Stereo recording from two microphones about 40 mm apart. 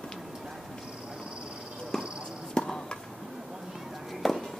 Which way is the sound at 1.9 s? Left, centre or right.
Centre.